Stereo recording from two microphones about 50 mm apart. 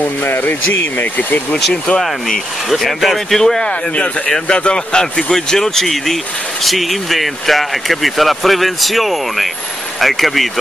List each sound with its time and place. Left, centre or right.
0.0 s speech: left
1.5 s speech: centre
2.0 s speech: centre
3.6 s speech: centre